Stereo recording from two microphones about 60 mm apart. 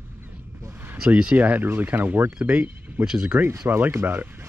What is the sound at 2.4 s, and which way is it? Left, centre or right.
Speech, centre.